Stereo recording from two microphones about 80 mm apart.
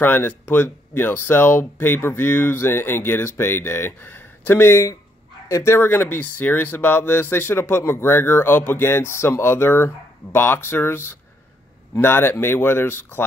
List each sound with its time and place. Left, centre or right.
0.0 s speech: left